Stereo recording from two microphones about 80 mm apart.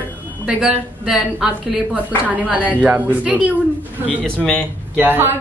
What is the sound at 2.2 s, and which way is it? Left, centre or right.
A woman's voice, centre.